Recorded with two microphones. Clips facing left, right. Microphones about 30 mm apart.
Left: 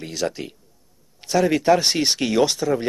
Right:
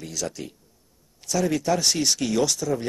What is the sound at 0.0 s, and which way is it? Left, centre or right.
Speech, left.